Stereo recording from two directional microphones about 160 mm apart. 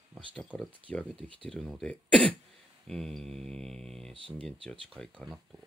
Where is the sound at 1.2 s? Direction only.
35° right (ahead or behind).